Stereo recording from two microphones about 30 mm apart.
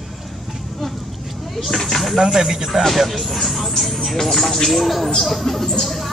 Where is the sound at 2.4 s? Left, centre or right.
Centre.